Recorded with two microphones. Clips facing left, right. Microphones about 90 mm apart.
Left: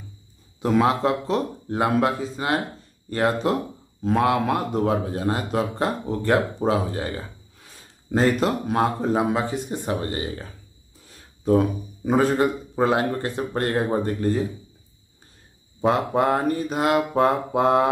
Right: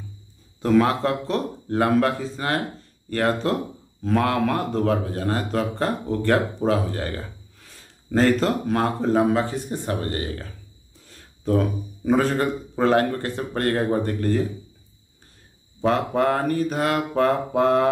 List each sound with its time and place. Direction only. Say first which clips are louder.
0.6 s speech: right 1 dB; 15° left (ahead or behind)
15.8 s mantra: even; 15° left (ahead or behind)